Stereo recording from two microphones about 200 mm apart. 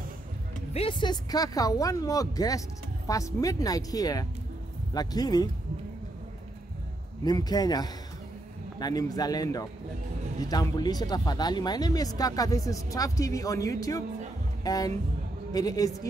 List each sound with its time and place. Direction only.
0.7 s speech: 25° left (ahead or behind)
7.2 s speech: 20° left (ahead or behind)